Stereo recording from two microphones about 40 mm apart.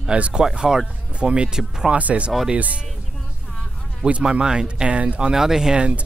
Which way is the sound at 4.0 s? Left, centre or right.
Right.